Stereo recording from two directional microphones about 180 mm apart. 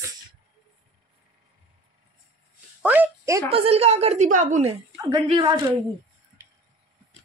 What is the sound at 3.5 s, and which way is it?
A woman's voice, 35° right (ahead or behind).